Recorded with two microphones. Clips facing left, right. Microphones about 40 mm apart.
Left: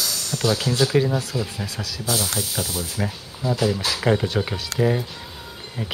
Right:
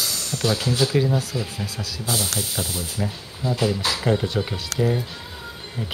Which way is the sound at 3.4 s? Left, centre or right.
Right.